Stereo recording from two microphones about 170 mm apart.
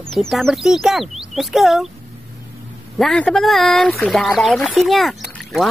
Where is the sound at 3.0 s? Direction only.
5° left (ahead or behind).